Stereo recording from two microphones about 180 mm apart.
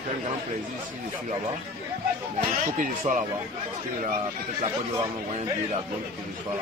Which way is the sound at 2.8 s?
45° right (ahead or behind).